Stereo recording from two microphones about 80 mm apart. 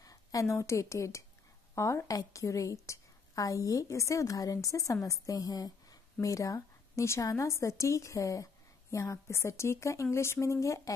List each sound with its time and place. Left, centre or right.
0.0 s a woman's voice: left